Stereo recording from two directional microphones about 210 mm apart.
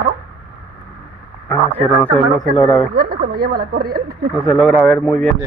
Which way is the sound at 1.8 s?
30° right (ahead or behind).